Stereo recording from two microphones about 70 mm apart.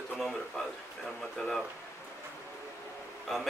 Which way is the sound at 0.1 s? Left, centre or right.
Centre.